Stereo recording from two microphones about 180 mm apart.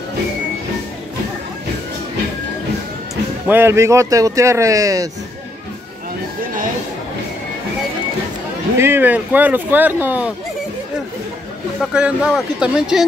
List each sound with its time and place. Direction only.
3.4 s speech: 15° right (ahead or behind)
8.7 s speech: 10° right (ahead or behind)
11.8 s speech: centre (ahead or behind)